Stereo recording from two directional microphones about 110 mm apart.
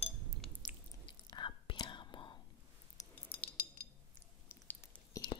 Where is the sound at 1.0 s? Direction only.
45° left (ahead or behind).